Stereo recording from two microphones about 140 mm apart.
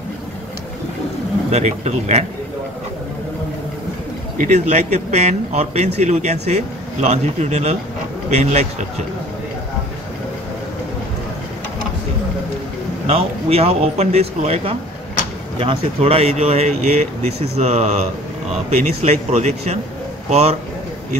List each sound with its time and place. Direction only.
1.5 s a man's voice: 55° right (ahead or behind)
4.4 s a man's voice: 55° right (ahead or behind)
13.0 s a man's voice: 45° right (ahead or behind)